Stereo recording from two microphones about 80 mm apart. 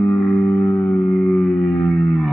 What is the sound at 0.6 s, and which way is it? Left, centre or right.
Music, left.